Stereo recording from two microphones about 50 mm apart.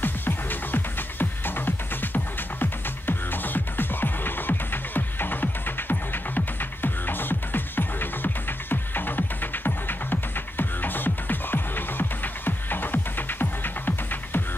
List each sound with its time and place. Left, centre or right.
0.0 s music: left
2.0 s music: left